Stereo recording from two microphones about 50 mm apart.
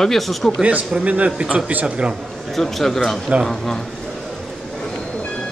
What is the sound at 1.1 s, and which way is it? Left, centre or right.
Speech, right.